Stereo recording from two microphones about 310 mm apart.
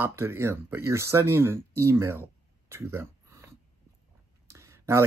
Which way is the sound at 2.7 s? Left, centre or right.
Centre.